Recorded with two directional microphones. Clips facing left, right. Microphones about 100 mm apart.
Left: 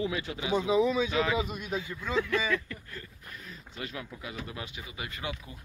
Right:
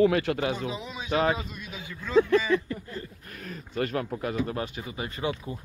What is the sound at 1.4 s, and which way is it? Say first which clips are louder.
Speech: left 3 dB; 60° left (ahead or behind).